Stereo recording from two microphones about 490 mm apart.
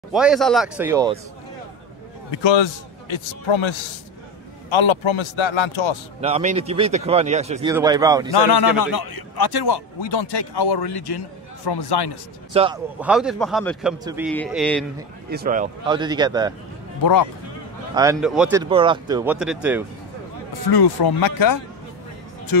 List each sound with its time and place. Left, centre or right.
0.1 s a man's voice: centre
2.3 s a man's voice: left
6.2 s a man's voice: centre
8.4 s a man's voice: left
12.5 s a man's voice: centre
15.2 s a man's voice: centre
17.0 s speech: left
17.9 s a man's voice: centre
20.7 s a man's voice: left